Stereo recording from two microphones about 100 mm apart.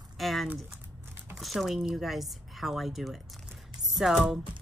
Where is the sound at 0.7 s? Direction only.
20° right (ahead or behind).